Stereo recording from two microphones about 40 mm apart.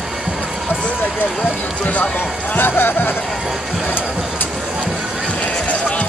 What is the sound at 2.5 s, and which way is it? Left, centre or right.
Speech, left.